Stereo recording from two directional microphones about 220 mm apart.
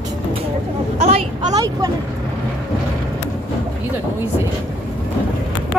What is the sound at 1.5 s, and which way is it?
Speech, 15° right (ahead or behind).